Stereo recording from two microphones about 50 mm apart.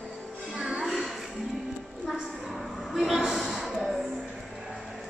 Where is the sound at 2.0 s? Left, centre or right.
Centre.